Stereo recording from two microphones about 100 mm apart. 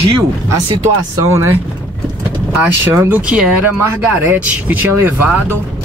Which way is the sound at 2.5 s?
20° right (ahead or behind).